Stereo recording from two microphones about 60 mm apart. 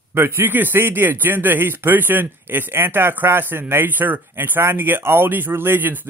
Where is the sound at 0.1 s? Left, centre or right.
Right.